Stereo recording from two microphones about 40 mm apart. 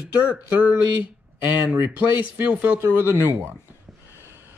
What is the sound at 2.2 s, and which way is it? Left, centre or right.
Speech, right.